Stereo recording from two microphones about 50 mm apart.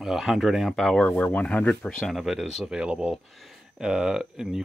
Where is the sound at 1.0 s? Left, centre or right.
Left.